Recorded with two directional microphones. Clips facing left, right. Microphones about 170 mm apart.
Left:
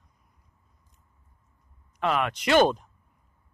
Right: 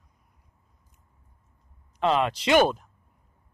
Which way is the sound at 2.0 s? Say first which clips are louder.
Right 3 dB; 30° right (ahead or behind).